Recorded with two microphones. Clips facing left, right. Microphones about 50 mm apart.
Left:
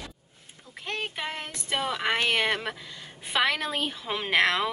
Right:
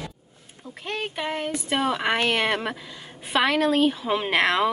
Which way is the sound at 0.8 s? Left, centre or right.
Centre.